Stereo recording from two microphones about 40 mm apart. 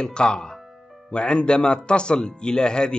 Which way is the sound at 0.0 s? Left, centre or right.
Left.